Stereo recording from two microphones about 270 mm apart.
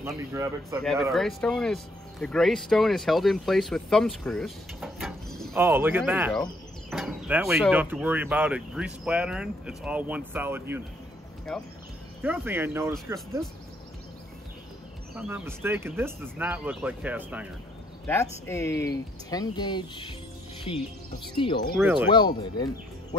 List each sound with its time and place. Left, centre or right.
0.0 s speech: centre
1.1 s speech: centre
15.1 s speech: centre
18.0 s speech: centre
21.7 s speech: centre
22.1 s speech: centre